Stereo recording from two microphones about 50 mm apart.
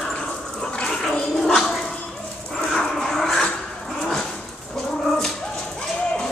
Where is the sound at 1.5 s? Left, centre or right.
Centre.